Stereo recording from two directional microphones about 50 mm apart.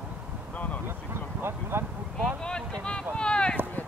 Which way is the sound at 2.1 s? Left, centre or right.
Centre.